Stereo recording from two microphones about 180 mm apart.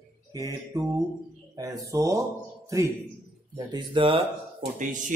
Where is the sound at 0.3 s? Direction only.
20° right (ahead or behind).